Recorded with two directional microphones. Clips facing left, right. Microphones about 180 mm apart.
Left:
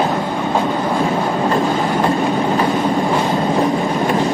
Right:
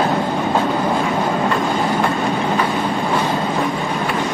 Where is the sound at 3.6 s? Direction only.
35° left (ahead or behind).